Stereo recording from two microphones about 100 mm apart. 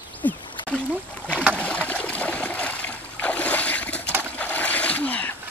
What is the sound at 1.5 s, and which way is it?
Stream, 15° left (ahead or behind).